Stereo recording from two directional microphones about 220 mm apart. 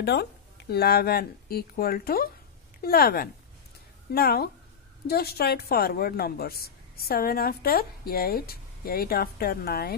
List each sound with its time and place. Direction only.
0.0 s speech: 50° left (ahead or behind)